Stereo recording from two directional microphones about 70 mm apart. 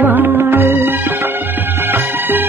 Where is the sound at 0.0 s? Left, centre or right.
Right.